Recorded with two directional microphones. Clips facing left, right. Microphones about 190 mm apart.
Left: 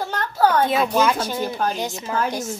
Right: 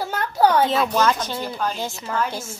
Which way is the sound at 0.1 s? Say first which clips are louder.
Right 1 dB; 10° right (ahead or behind).